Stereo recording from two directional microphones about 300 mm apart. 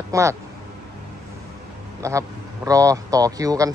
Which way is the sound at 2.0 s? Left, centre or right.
Centre.